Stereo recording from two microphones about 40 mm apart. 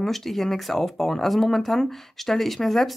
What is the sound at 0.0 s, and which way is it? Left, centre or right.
Speech, centre.